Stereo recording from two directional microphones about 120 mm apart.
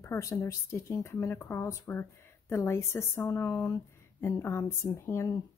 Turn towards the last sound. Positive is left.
turn(degrees=25)  # may be behind; listen again after turning